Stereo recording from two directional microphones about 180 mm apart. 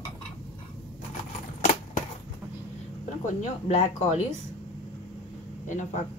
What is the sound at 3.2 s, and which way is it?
Speech, 40° left (ahead or behind).